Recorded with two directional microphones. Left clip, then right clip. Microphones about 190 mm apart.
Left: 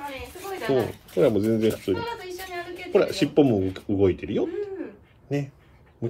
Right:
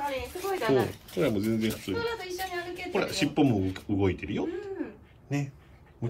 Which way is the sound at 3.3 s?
10° left (ahead or behind).